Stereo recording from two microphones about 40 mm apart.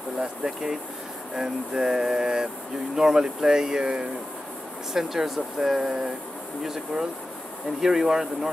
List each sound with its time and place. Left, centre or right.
0.2 s speech: centre
4.9 s speech: centre